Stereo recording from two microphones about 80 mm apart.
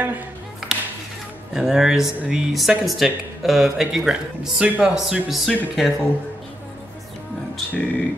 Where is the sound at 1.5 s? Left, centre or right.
Centre.